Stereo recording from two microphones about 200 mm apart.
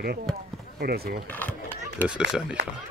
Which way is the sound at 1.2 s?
10° left (ahead or behind).